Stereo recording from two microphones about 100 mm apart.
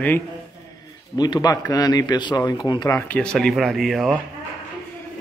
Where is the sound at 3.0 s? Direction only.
15° left (ahead or behind).